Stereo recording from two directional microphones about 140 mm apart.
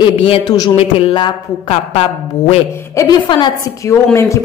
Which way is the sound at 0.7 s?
40° left (ahead or behind).